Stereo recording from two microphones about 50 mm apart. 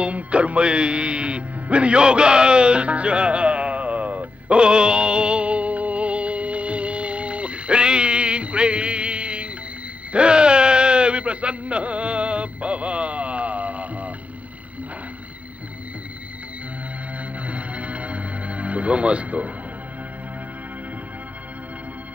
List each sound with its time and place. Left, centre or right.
0.0 s music: right
4.6 s music: centre
10.1 s a sound: centre
17.5 s music: right